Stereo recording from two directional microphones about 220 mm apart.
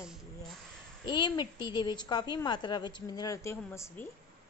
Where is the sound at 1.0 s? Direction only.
20° left (ahead or behind).